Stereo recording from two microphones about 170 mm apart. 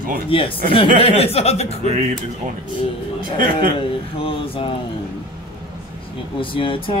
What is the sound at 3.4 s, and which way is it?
Speech, 55° right (ahead or behind).